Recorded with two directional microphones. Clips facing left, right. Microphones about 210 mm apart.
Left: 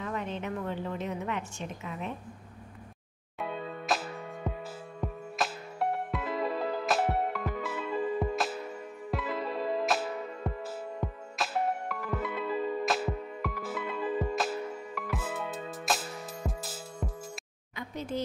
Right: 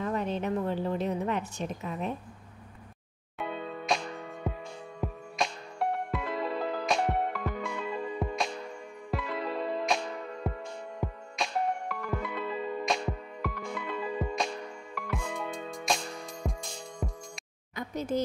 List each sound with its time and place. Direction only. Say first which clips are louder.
0.0 s a woman's voice: right 4 dB; 35° right (ahead or behind)
3.3 s music: even; centre (ahead or behind)
11.0 s music: right 3 dB; 5° right (ahead or behind)
11.3 s music: even; 5° left (ahead or behind)
17.7 s a sound: right 4 dB; 40° right (ahead or behind)